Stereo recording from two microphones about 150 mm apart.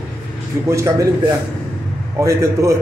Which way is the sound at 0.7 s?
20° right (ahead or behind).